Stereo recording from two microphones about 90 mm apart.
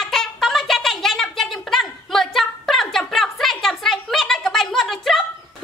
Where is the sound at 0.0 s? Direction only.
5° left (ahead or behind).